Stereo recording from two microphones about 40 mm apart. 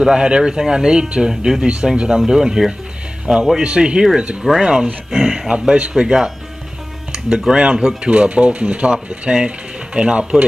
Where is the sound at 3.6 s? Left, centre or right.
Right.